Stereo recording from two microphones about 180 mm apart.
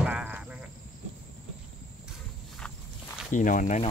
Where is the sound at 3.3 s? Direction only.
45° left (ahead or behind).